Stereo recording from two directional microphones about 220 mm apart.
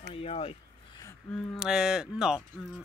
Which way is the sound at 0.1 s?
25° left (ahead or behind).